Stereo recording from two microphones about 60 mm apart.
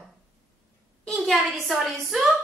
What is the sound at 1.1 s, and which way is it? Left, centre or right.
Speech, centre.